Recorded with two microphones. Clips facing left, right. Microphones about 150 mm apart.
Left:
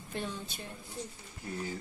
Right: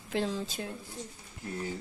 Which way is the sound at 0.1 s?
90° right.